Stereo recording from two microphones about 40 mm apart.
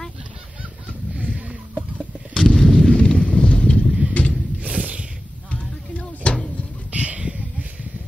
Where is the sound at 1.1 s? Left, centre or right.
Right.